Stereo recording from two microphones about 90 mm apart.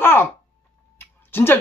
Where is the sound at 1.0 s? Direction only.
25° left (ahead or behind).